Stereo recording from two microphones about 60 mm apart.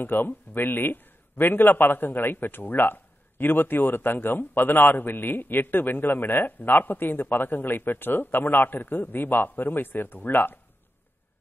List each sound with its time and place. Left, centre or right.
0.0 s a man's voice: left